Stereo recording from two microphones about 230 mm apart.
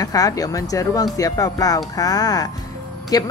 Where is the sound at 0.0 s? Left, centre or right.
Centre.